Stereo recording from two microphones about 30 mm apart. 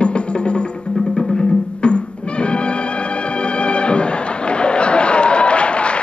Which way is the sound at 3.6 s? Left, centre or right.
Left.